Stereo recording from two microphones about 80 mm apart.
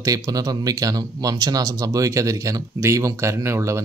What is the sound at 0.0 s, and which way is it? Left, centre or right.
Speech, right.